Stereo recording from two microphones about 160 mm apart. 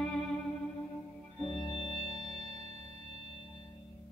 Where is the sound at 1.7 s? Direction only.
35° left (ahead or behind).